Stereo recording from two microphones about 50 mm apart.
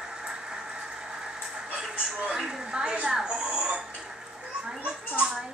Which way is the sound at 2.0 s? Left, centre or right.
Centre.